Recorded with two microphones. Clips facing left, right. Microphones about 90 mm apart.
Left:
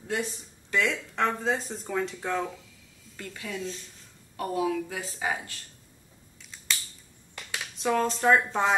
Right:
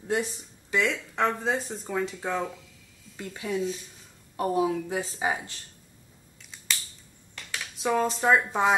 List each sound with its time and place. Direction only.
0.1 s speech: 15° right (ahead or behind)
0.8 s speech: centre (ahead or behind)
3.2 s speech: 15° right (ahead or behind)
4.4 s a woman's voice: 25° right (ahead or behind)
7.7 s speech: 5° right (ahead or behind)